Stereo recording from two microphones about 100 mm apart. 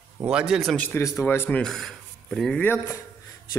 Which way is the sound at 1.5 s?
5° left (ahead or behind).